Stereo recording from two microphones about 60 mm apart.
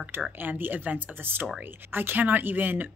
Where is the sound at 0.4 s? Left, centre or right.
Right.